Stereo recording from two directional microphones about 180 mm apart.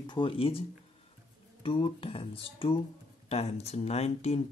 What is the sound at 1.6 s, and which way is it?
Speech, 30° left (ahead or behind).